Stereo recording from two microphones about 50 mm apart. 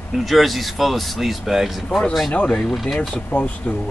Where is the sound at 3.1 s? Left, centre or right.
Left.